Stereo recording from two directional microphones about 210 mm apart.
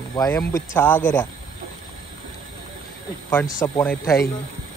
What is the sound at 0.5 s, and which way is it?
Speech, 10° left (ahead or behind).